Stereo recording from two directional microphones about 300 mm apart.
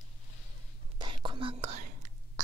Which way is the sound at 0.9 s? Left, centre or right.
Centre.